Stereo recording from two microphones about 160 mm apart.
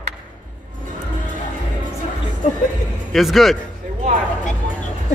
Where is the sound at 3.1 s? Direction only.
Centre (ahead or behind).